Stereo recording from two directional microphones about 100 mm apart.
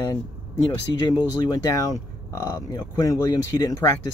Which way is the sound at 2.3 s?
40° left (ahead or behind).